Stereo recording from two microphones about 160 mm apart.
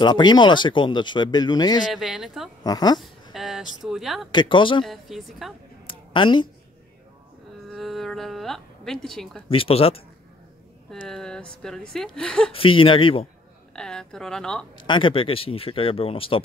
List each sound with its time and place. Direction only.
0.0 s speech: 25° left (ahead or behind)
1.9 s a woman's voice: 5° right (ahead or behind)
2.6 s speech: 25° left (ahead or behind)
3.0 s a sound: centre (ahead or behind)
4.3 s speech: 30° left (ahead or behind)
4.8 s a woman's voice: centre (ahead or behind)
5.9 s a sound: 30° left (ahead or behind)
7.7 s music: centre (ahead or behind)
9.5 s speech: 35° left (ahead or behind)
10.9 s a woman's voice: 5° left (ahead or behind)
12.5 s speech: 35° left (ahead or behind)
13.7 s a woman's voice: 5° left (ahead or behind)
14.8 s speech: 30° left (ahead or behind)